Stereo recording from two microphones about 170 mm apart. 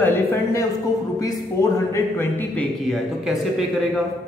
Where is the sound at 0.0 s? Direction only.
10° left (ahead or behind).